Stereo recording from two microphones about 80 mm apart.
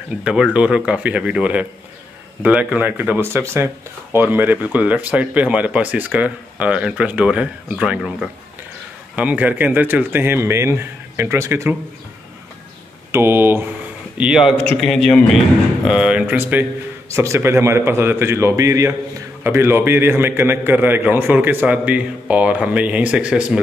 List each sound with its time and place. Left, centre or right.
0.2 s speech: centre
9.1 s speech: centre; by 11.7 s right
13.1 s speech: right
14.1 s speech: centre
14.8 s a man's voice: centre
15.8 s speech: centre
17.1 s a man's voice: right; by 23.6 s centre